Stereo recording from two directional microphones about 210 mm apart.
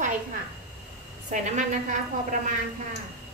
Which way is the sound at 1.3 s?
35° right (ahead or behind).